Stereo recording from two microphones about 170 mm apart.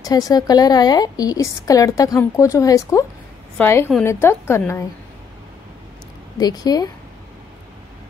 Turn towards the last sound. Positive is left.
turn(degrees=25)  # may be behind; listen again after turning